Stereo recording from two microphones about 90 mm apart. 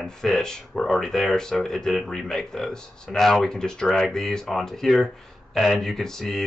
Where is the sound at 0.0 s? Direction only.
5° left (ahead or behind).